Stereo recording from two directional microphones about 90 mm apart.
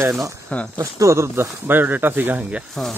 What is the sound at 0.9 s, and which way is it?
Speech, 35° right (ahead or behind).